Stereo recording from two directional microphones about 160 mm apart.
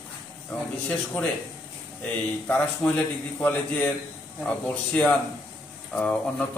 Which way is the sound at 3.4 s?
10° left (ahead or behind).